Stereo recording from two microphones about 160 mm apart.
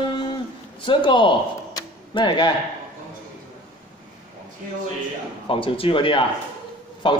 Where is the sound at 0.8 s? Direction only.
30° left (ahead or behind).